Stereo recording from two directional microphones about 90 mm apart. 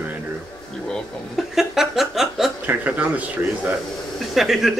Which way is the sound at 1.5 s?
5° right (ahead or behind).